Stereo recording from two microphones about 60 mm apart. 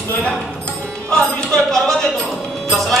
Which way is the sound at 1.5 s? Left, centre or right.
Centre.